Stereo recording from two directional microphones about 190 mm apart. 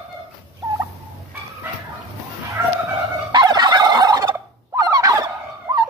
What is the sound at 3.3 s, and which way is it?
Fowl, 20° right (ahead or behind).